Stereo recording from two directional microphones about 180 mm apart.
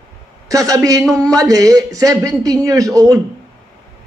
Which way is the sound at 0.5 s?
20° right (ahead or behind).